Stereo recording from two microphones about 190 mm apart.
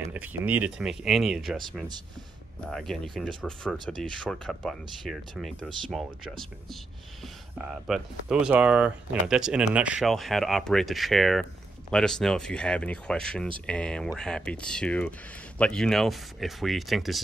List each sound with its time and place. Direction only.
0.0 s speech: 10° right (ahead or behind)
2.7 s speech: centre (ahead or behind)
7.5 s speech: 5° right (ahead or behind)